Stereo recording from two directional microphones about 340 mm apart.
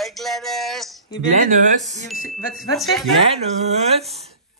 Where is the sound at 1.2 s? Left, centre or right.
Right.